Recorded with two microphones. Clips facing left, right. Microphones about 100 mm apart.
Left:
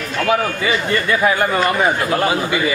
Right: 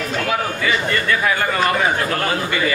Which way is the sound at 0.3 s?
20° left (ahead or behind).